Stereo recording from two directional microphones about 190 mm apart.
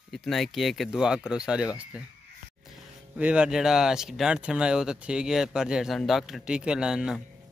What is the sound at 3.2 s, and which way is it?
Speech, 5° right (ahead or behind).